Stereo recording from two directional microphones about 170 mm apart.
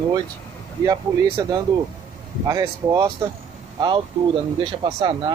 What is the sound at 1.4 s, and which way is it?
Speech, 25° right (ahead or behind).